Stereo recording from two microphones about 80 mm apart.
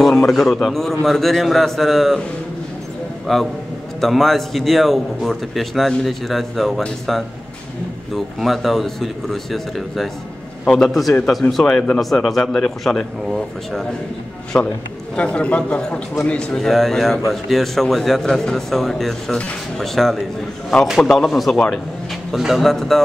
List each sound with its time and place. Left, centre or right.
0.0 s speech: centre
3.3 s speech: centre
11.6 s a man's voice: centre
12.0 s speech: centre
14.5 s a man's voice: left
15.1 s a man's voice: centre
16.5 s speech: centre